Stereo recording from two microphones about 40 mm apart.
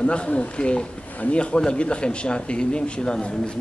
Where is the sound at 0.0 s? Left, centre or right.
Left.